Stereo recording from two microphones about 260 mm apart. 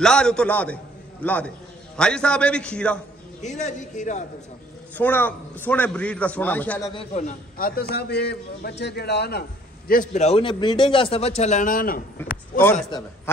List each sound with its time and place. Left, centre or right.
0.0 s a man's voice: centre
3.4 s a man's voice: left
4.9 s a man's voice: centre
6.9 s a man's voice: left
9.8 s a man's voice: left
12.2 s a man's voice: centre